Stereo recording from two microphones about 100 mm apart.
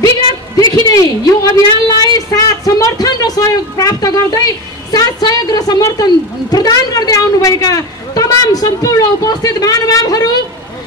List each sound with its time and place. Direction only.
0.8 s a woman's voice: 40° left (ahead or behind)